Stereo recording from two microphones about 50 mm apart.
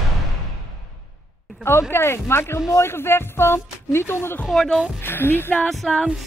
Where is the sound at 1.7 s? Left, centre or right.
Left.